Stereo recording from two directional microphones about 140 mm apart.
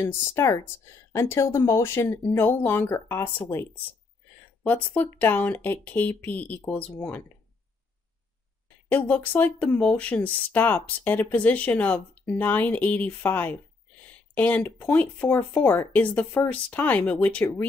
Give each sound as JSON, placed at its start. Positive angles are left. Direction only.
{"t": 0.0, "sound": "speech", "side_deg": 20}
{"t": 8.9, "sound": "speech", "side_deg": 10}